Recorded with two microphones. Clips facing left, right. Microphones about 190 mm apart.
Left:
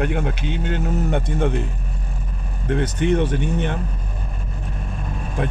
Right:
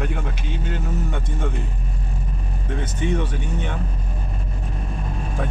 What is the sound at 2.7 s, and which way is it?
Speech, 70° left (ahead or behind).